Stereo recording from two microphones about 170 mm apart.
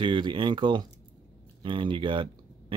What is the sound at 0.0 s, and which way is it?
Speech, 30° right (ahead or behind).